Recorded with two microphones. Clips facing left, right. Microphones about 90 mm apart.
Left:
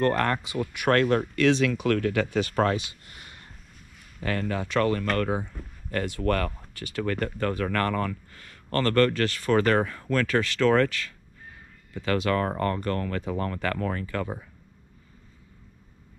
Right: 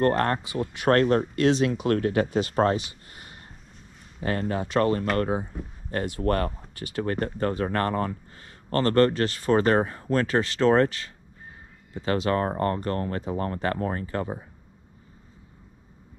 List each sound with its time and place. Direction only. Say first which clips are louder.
0.0 s a man's voice: right 1 dB; 35° right (ahead or behind)